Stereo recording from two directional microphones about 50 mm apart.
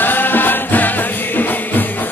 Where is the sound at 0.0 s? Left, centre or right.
Left.